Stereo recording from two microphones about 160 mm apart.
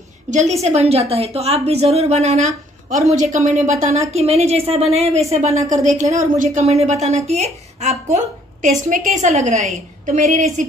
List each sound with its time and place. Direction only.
0.3 s a woman's voice: 45° right (ahead or behind)